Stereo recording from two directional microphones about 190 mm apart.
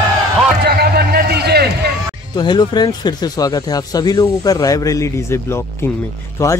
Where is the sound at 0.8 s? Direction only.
55° right (ahead or behind).